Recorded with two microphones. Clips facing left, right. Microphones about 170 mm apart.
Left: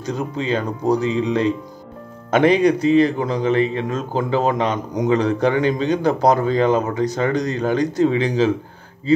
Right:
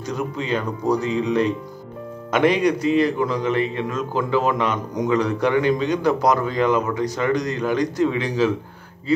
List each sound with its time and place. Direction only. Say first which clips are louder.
0.1 s a man's voice: left 2 dB; 30° left (ahead or behind)